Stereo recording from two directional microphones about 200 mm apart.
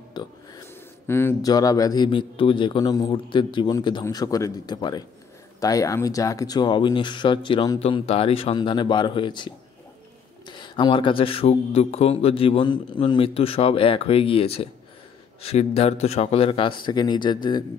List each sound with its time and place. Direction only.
0.2 s speech: 20° left (ahead or behind)
10.5 s speech: 20° left (ahead or behind)